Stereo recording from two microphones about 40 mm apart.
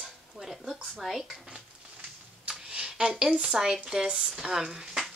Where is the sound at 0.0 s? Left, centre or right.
Centre.